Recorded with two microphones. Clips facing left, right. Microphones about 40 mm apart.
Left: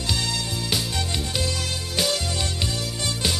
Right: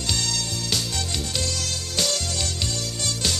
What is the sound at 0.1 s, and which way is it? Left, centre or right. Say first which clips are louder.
Music: left 1 dB; centre.